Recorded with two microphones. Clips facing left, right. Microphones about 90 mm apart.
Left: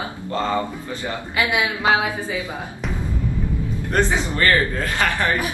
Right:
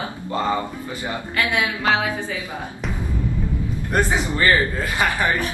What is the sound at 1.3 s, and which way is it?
A woman's voice, 15° left (ahead or behind).